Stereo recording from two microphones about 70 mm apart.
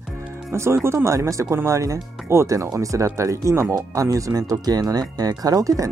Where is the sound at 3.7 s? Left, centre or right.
Right.